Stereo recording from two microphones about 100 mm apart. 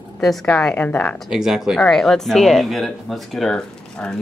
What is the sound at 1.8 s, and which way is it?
Speech, 5° left (ahead or behind).